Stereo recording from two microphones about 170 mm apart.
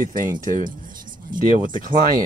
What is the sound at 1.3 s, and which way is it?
Speech, 50° right (ahead or behind).